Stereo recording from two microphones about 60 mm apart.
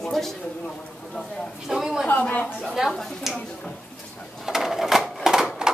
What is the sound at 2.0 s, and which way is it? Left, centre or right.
Speech, left.